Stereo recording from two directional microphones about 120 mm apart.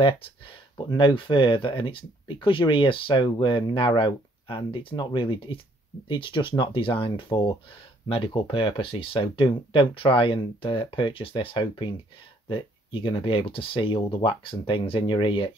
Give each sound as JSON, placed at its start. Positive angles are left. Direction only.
{"t": 0.7, "sound": "speech", "side_deg": 40}